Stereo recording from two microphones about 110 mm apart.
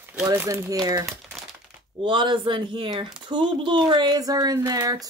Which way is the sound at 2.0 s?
45° right (ahead or behind).